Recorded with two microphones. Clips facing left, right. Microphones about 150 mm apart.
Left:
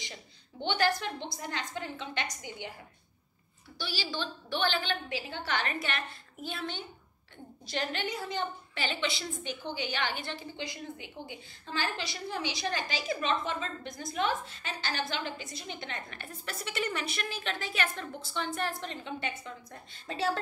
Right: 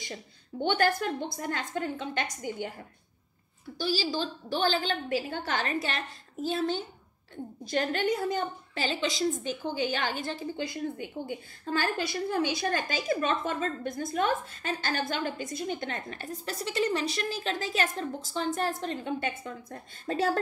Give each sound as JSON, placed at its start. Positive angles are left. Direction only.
{"t": 0.0, "sound": "a woman's voice", "side_deg": -50}
{"t": 3.7, "sound": "a woman's voice", "side_deg": -40}